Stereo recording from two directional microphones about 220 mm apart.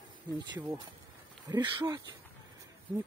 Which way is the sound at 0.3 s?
20° right (ahead or behind).